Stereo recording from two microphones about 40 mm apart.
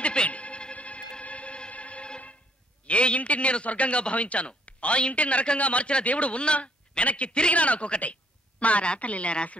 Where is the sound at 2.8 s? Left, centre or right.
Left.